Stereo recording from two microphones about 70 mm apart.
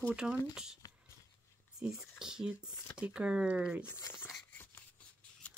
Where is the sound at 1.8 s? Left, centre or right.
Centre.